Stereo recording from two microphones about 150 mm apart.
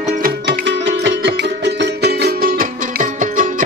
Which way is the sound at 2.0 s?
90° right.